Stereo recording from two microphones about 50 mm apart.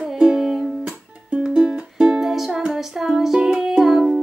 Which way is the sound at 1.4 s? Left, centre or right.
Centre.